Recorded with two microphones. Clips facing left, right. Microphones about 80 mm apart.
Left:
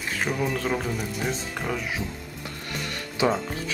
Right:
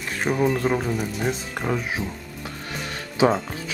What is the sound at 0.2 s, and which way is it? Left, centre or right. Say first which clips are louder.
Speech: right 6 dB; centre.